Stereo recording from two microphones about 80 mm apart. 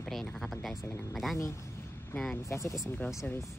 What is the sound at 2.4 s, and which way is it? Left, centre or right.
Speech, left.